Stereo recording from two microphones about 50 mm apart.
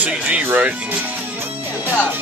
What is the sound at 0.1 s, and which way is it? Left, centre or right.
Speech, right.